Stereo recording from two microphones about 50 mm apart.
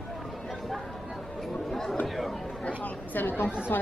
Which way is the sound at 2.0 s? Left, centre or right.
Centre.